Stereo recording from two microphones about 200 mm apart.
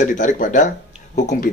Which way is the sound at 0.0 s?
40° left (ahead or behind).